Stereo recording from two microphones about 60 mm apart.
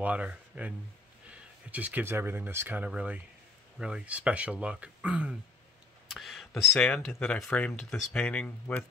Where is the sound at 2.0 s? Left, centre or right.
Right.